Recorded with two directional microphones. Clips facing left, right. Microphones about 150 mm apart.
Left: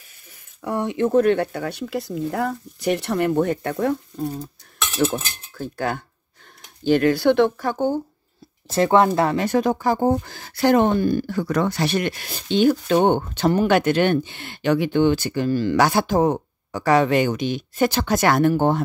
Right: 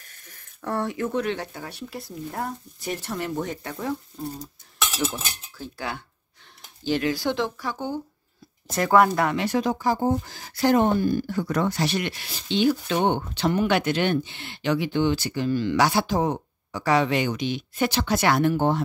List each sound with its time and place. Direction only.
0.0 s a sound: 10° left (ahead or behind)
1.1 s speech: 55° left (ahead or behind)
8.6 s speech: 25° left (ahead or behind)
9.4 s speech: 50° left (ahead or behind)